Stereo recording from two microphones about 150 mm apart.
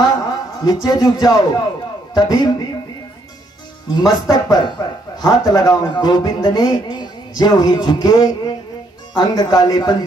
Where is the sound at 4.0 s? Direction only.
25° left (ahead or behind).